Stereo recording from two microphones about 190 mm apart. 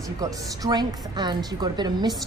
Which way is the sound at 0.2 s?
20° right (ahead or behind).